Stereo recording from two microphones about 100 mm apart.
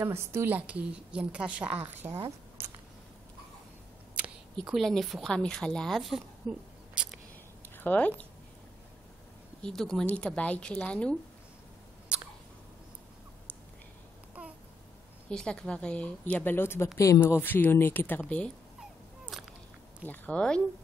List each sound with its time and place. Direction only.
0.0 s a woman's voice: 25° right (ahead or behind)
0.6 s a woman's voice: 15° right (ahead or behind)
4.1 s a sound: 10° right (ahead or behind)
4.7 s a woman's voice: centre (ahead or behind)
7.7 s speech: 15° left (ahead or behind)
9.6 s speech: 5° left (ahead or behind)
15.2 s a woman's voice: 10° left (ahead or behind)
19.3 s a sound: centre (ahead or behind)
20.1 s speech: 10° left (ahead or behind)